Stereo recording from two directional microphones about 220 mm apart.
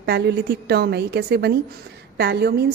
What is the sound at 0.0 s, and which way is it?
Speech, 45° right (ahead or behind).